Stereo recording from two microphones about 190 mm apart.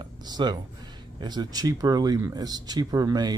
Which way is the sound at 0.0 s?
20° right (ahead or behind).